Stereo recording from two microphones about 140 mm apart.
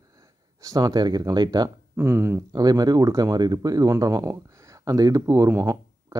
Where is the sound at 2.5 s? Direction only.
30° right (ahead or behind).